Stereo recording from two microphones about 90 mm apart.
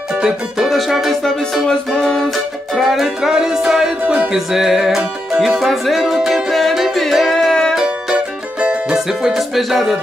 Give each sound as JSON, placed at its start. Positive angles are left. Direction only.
{"t": 0.2, "sound": "music", "side_deg": -5}
{"t": 4.0, "sound": "music", "side_deg": -20}
{"t": 4.3, "sound": "music", "side_deg": -5}
{"t": 7.7, "sound": "music", "side_deg": -10}